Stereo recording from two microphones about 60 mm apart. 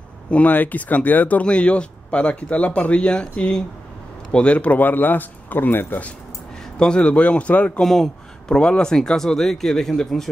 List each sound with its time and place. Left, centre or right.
0.3 s a man's voice: left
6.8 s speech: centre
7.8 s speech: centre